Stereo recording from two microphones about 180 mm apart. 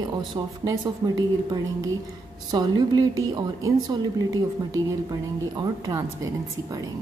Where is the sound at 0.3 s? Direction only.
25° right (ahead or behind).